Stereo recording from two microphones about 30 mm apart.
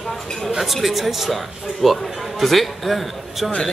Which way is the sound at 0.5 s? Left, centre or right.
Centre.